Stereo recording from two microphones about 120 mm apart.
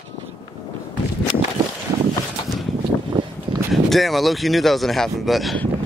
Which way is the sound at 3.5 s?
40° right (ahead or behind).